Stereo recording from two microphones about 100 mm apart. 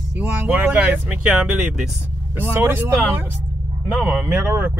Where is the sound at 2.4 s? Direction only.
20° right (ahead or behind).